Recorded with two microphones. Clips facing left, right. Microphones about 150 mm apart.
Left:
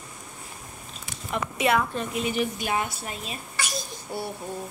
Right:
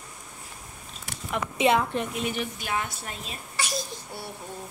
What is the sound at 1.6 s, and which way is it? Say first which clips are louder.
Speech: right 1 dB; 25° right (ahead or behind).